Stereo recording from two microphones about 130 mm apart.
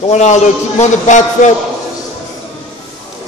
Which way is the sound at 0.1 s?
65° left (ahead or behind).